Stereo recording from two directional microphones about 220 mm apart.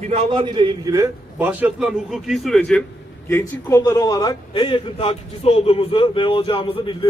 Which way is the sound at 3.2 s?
10° left (ahead or behind).